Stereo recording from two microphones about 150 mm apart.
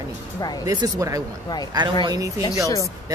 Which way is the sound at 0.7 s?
25° right (ahead or behind).